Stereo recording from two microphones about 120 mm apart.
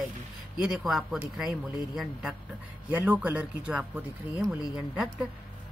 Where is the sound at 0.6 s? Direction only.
5° right (ahead or behind).